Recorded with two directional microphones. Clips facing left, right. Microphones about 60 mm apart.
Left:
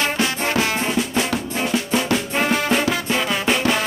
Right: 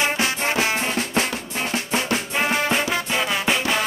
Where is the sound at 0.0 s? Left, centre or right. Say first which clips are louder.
Left 1 dB; centre.